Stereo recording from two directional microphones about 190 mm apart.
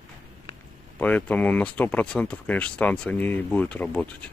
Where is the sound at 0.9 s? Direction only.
10° left (ahead or behind).